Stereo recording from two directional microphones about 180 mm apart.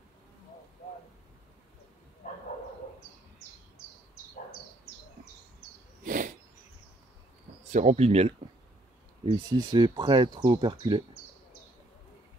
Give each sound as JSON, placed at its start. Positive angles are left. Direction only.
{"t": 6.0, "sound": "a sound", "side_deg": -50}
{"t": 7.7, "sound": "speech", "side_deg": -40}
{"t": 9.5, "sound": "speech", "side_deg": -20}